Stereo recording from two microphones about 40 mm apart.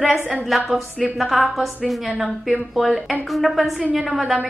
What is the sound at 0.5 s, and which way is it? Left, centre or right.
A woman's voice, centre.